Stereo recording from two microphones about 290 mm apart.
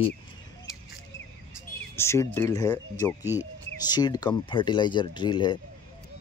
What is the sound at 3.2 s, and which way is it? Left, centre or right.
Speech, centre.